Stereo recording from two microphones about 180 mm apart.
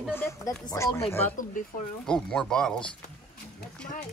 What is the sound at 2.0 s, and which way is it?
Speech, 5° left (ahead or behind).